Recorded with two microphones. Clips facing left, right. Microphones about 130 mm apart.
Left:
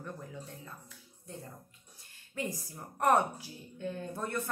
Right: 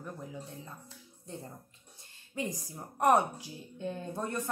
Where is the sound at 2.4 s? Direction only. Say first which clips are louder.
Right 1 dB; 15° right (ahead or behind).